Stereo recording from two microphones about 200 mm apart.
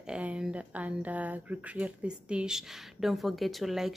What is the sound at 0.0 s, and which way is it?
Speech, 5° right (ahead or behind).